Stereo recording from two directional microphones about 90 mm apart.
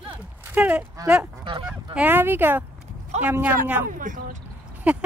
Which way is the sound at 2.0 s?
20° right (ahead or behind).